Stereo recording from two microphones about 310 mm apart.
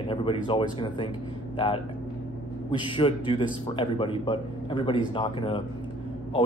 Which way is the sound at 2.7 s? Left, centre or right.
Centre.